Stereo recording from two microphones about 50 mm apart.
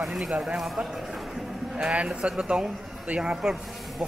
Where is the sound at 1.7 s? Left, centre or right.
Right.